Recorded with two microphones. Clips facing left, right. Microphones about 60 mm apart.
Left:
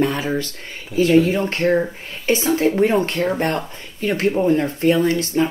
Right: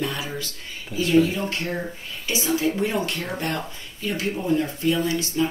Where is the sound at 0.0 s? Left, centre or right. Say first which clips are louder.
Left 8 dB; left.